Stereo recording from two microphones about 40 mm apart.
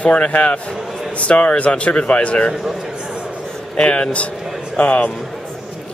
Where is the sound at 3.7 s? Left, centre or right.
Left.